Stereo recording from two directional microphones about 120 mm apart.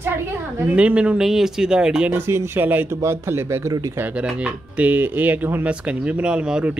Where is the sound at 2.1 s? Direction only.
20° right (ahead or behind).